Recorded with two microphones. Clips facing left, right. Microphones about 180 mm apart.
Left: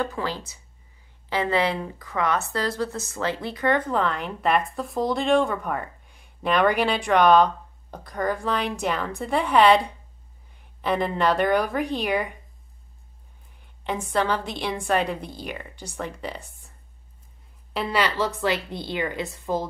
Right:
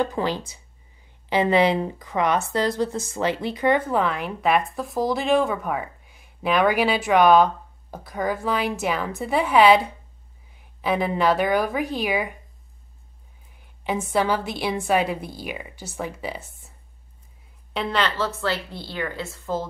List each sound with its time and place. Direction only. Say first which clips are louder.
0.0 s a woman's voice: right 4 dB; 20° right (ahead or behind); by 12.4 s 5° right (ahead or behind)
14.1 s a woman's voice: right 1 dB; 10° right (ahead or behind)
17.7 s a woman's voice: even; 10° left (ahead or behind)